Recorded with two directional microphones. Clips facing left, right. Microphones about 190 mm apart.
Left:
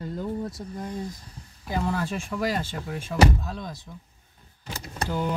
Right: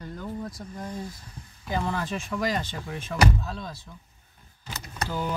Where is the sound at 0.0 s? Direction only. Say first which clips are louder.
Left 4 dB; 25° left (ahead or behind).